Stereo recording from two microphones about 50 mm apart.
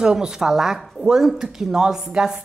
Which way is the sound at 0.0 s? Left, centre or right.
Centre.